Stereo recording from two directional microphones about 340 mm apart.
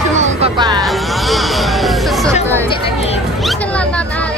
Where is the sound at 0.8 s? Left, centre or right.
Centre.